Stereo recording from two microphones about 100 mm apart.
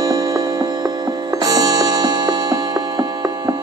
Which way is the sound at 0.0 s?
35° right (ahead or behind).